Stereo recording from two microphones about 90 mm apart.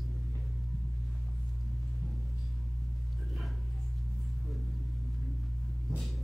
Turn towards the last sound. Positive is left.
turn(degrees=0)  # may be behind; listen again after turning